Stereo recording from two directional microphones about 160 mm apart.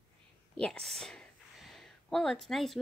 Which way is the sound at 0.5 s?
5° left (ahead or behind).